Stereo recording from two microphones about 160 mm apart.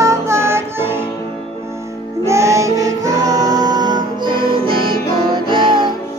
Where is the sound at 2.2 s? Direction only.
20° right (ahead or behind).